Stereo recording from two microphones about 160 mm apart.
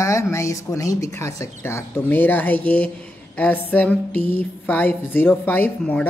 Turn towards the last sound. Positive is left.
turn(degrees=10)  # may be behind; listen again after turning